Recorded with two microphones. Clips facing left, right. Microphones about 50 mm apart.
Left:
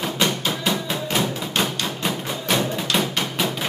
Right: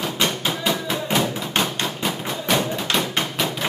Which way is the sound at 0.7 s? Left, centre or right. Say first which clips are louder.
Right 2 dB; centre.